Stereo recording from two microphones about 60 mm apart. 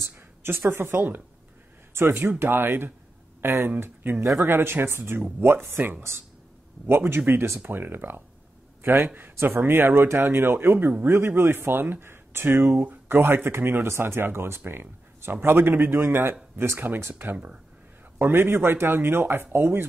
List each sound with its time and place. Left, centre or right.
0.4 s speech: right